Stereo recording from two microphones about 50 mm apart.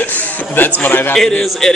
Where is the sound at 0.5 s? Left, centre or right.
Left.